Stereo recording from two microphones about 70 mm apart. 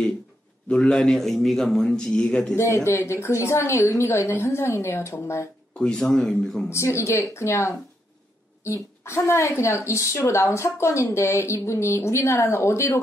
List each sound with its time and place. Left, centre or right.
0.7 s a man's voice: centre
2.5 s a woman's voice: left
5.8 s a man's voice: centre
6.7 s a woman's voice: left